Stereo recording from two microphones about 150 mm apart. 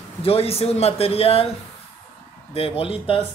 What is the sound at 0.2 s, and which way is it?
Speech, 40° left (ahead or behind).